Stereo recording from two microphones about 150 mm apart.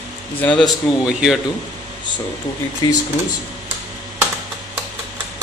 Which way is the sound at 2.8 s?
25° left (ahead or behind).